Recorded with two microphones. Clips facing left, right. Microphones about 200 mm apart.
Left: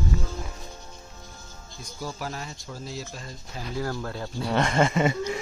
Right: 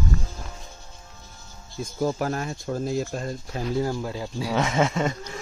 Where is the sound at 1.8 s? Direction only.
50° right (ahead or behind).